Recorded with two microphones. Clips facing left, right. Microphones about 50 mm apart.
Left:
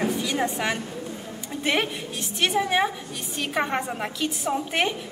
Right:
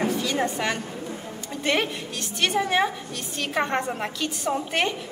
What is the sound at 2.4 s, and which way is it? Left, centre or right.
A woman's voice, centre.